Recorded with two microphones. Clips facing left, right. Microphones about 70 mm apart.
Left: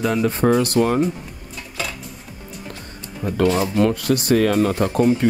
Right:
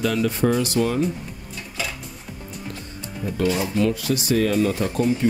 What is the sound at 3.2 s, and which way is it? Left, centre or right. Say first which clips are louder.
Speech: left 4 dB; left.